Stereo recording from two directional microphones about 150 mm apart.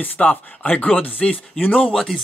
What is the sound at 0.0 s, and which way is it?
Speech, 10° left (ahead or behind).